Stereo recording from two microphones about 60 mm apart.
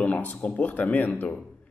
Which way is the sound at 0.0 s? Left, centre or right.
Left.